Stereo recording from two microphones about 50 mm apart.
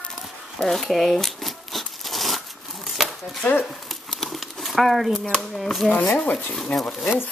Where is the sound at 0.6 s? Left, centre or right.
Centre.